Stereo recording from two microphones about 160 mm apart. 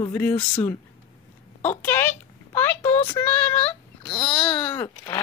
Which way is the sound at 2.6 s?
10° left (ahead or behind).